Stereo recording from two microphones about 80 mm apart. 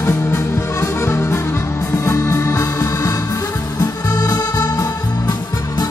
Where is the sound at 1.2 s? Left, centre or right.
Left.